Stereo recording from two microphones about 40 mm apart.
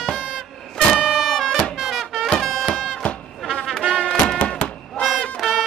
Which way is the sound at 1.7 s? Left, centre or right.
Centre.